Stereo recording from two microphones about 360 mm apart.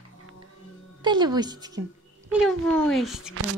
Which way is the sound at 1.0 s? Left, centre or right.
Centre.